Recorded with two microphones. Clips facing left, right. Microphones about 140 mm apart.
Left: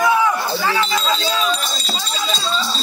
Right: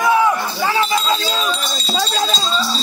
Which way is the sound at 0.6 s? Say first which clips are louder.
Right 5 dB; 25° right (ahead or behind).